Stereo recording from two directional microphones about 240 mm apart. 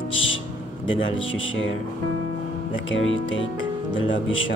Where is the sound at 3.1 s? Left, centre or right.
Left.